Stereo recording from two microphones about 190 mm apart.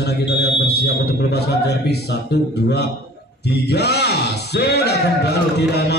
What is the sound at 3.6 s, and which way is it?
A man's voice, 60° left (ahead or behind).